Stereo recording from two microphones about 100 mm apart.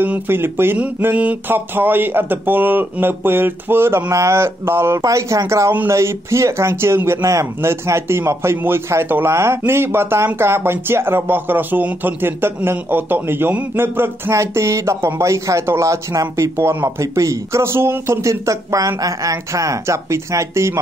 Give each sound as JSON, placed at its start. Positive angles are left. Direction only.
{"t": 0.0, "sound": "speech", "side_deg": -20}